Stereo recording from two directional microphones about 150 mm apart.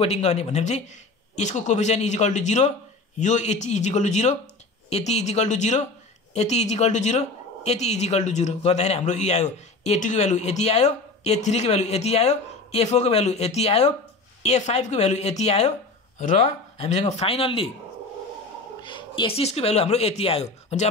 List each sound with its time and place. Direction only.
0.0 s a woman's voice: 45° left (ahead or behind)
18.8 s speech: 30° left (ahead or behind)